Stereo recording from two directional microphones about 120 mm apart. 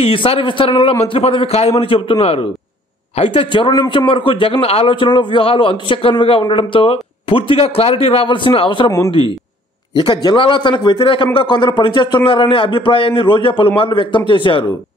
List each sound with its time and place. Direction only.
0.0 s a man's voice: 50° left (ahead or behind)
9.9 s a man's voice: 40° left (ahead or behind)